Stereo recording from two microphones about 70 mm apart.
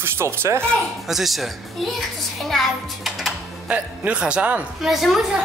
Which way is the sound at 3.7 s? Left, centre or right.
Centre.